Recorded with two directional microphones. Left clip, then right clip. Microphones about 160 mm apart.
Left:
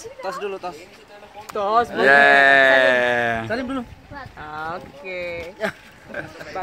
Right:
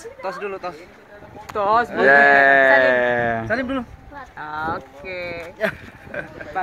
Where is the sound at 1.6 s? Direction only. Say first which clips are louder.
Right 1 dB; 35° left (ahead or behind).